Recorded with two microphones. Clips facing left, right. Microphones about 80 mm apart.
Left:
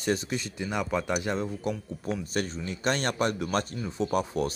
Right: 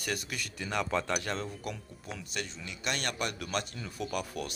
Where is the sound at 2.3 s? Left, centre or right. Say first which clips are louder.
Left 9 dB; left.